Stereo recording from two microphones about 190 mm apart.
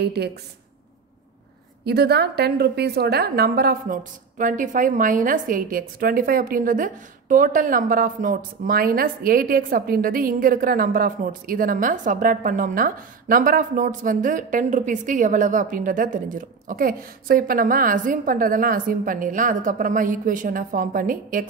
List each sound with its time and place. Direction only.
0.0 s a woman's voice: 60° right (ahead or behind)
1.9 s a woman's voice: 60° right (ahead or behind)